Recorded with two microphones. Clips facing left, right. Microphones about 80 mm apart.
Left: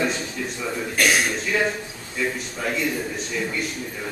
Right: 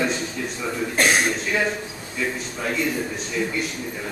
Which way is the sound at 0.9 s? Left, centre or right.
Right.